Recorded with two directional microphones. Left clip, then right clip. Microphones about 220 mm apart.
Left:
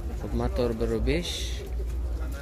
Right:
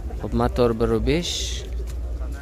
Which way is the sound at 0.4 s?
25° right (ahead or behind).